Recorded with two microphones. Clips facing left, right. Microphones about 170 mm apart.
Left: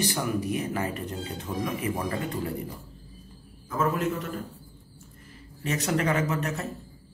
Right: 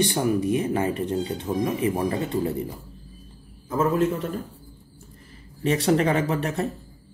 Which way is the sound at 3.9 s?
30° right (ahead or behind).